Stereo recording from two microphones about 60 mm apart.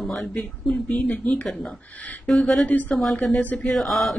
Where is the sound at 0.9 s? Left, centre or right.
Left.